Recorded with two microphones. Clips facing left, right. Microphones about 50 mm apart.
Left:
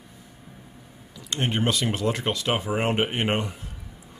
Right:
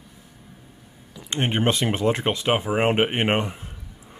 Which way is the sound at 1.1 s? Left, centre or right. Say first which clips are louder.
Right 2 dB; right.